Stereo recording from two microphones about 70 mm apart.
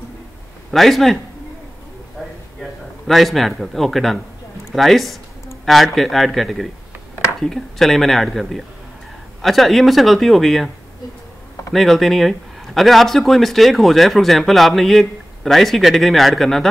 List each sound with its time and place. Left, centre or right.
0.7 s speech: centre
3.1 s speech: centre
11.7 s speech: centre